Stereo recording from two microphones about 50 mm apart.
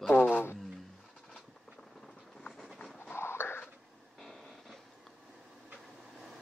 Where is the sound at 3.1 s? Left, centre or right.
Left.